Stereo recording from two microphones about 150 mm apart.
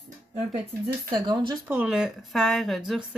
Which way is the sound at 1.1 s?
30° right (ahead or behind).